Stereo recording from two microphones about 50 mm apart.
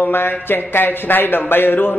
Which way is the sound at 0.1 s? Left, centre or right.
Left.